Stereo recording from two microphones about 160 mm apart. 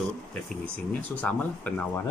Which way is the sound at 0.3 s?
10° left (ahead or behind).